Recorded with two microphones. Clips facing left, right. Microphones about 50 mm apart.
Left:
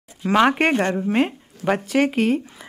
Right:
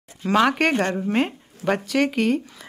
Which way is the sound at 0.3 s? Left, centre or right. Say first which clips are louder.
Left 2 dB; left.